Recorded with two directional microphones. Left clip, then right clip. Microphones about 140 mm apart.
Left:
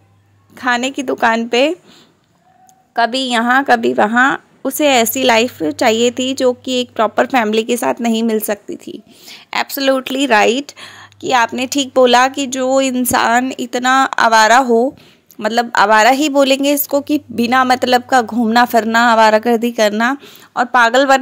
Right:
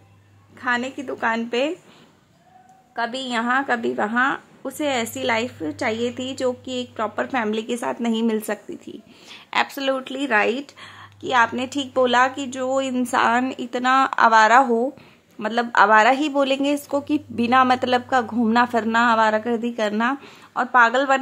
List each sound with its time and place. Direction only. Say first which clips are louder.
0.6 s a woman's voice: left 7 dB; 55° left (ahead or behind)
1.5 s a woman's voice: left 9 dB; 45° left (ahead or behind)
2.9 s a woman's voice: left 10 dB; 50° left (ahead or behind)